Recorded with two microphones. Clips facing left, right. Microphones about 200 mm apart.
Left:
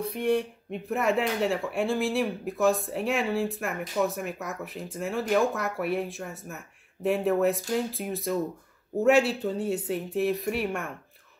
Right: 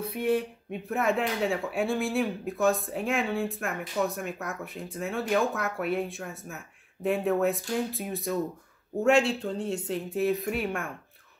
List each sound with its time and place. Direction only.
0.2 s speech: 5° right (ahead or behind)